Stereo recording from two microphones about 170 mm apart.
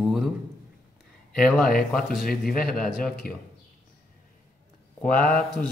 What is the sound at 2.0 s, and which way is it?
Speech, 60° left (ahead or behind).